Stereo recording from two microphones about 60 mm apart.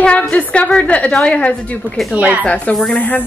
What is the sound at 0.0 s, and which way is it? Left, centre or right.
A woman's voice, left.